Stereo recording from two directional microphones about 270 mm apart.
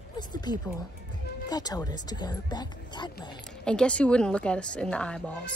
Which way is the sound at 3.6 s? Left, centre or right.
Centre.